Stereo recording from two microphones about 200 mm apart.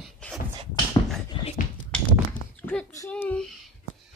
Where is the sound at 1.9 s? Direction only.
5° left (ahead or behind).